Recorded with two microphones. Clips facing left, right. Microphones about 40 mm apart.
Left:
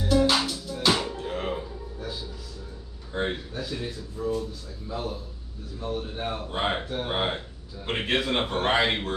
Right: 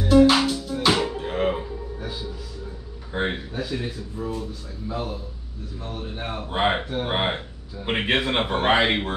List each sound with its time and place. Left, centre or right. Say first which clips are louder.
0.0 s music: right 6 dB; right
3.1 s a man's voice: right 3 dB; right